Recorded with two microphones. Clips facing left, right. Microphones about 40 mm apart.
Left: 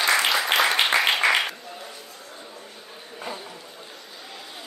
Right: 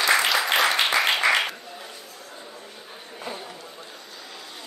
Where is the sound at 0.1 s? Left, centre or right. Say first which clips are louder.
Right 1 dB; centre.